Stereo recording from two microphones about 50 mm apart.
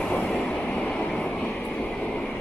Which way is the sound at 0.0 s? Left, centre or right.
Centre.